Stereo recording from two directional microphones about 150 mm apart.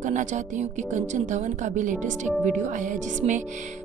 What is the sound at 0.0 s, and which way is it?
Speech, 55° right (ahead or behind).